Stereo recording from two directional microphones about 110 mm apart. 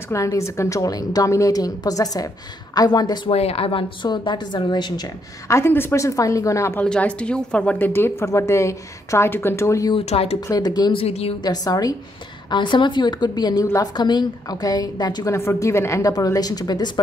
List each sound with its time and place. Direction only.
0.1 s a woman's voice: 30° left (ahead or behind)
3.3 s speech: 65° left (ahead or behind)
4.1 s a woman's voice: 45° left (ahead or behind)
5.5 s a woman's voice: 20° left (ahead or behind)
6.8 s a woman's voice: 10° left (ahead or behind); by 9.9 s 30° left (ahead or behind)
9.9 s speech: 65° left (ahead or behind)
10.4 s a woman's voice: 35° left (ahead or behind)
10.9 s speech: 65° left (ahead or behind)
11.4 s a woman's voice: 35° left (ahead or behind)
15.3 s a woman's voice: 25° left (ahead or behind); by 17.0 s 40° left (ahead or behind)